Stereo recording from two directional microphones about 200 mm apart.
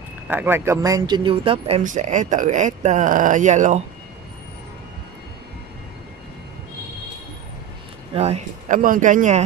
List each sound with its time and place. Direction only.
0.3 s speech: 10° right (ahead or behind); by 1.8 s 30° right (ahead or behind)
1.8 s speech: 40° right (ahead or behind)
8.1 s speech: 30° right (ahead or behind)